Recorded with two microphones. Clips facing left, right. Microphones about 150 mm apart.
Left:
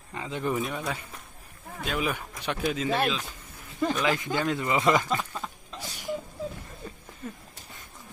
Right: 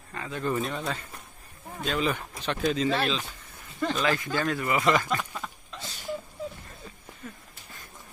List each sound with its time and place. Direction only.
0.1 s speech: 20° left (ahead or behind)
4.9 s speech: 15° left (ahead or behind)
5.8 s a sound: 15° left (ahead or behind)